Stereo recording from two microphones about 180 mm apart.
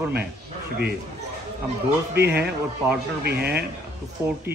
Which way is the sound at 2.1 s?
65° right (ahead or behind).